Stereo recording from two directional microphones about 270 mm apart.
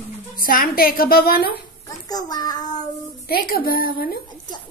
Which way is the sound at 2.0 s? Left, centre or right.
Centre.